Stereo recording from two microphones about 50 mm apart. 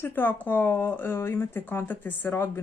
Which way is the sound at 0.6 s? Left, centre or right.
Left.